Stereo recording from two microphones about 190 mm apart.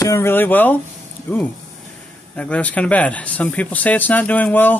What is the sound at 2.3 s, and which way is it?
Speech, 5° left (ahead or behind).